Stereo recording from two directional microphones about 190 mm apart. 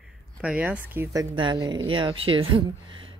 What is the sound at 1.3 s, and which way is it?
Speech, 25° right (ahead or behind).